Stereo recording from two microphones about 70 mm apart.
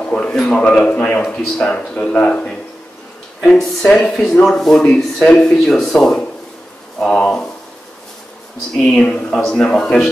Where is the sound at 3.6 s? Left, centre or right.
Centre.